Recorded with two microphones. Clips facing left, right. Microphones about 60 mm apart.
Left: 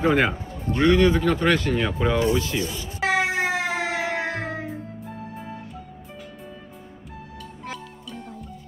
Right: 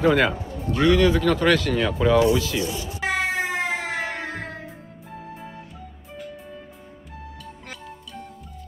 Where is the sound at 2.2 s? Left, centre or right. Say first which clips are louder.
Right 3 dB; left.